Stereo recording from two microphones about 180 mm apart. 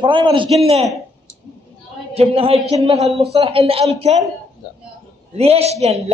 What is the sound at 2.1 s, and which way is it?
A man's voice, 35° right (ahead or behind).